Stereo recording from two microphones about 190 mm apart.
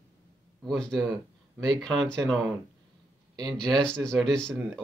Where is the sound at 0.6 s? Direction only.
Centre (ahead or behind).